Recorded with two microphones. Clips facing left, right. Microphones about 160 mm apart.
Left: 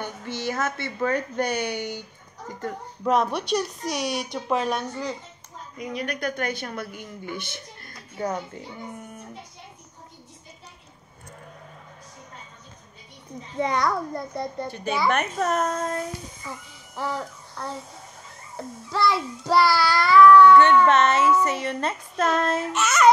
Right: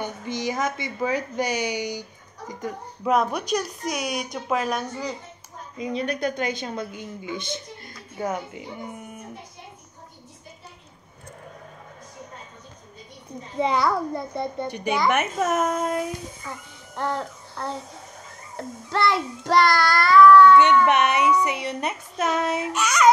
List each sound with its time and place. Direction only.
0.0 s a woman's voice: 15° right (ahead or behind)
5.8 s a woman's voice: 25° right (ahead or behind)
8.3 s speech: 10° right (ahead or behind)
13.7 s speech: 5° right (ahead or behind)
16.9 s child singing: 5° left (ahead or behind)
18.6 s speech: centre (ahead or behind)
20.8 s speech: 15° right (ahead or behind)
22.7 s speech: centre (ahead or behind)